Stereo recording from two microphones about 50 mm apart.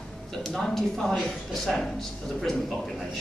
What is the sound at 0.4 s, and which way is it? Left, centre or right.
Speech, centre.